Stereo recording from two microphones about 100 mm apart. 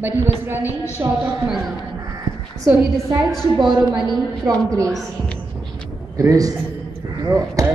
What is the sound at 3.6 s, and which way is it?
Speech, 50° right (ahead or behind).